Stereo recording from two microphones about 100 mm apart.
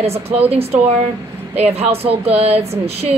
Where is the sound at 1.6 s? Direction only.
85° right.